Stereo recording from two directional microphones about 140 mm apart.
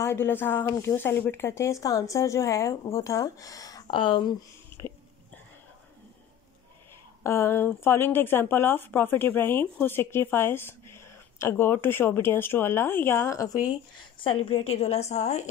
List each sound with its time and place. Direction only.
0.0 s speech: 15° left (ahead or behind)
3.8 s speech: 35° left (ahead or behind)
7.2 s speech: 15° left (ahead or behind)
13.9 s a woman's voice: 40° left (ahead or behind)